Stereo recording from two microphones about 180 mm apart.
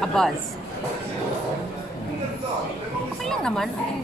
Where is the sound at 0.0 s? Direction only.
Centre (ahead or behind).